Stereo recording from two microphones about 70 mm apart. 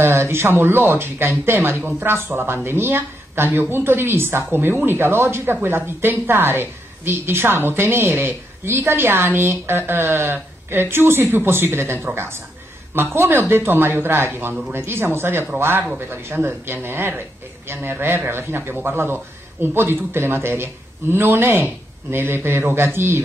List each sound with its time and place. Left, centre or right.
0.0 s speech: right